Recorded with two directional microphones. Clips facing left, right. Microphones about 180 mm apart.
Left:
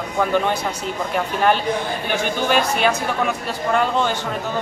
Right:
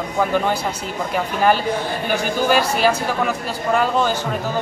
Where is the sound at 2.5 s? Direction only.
5° right (ahead or behind).